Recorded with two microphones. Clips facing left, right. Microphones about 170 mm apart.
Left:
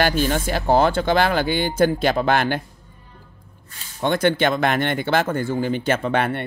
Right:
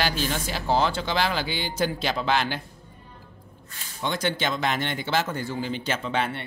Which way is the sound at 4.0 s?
55° left (ahead or behind).